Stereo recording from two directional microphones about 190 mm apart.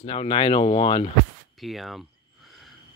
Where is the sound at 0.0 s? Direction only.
30° left (ahead or behind).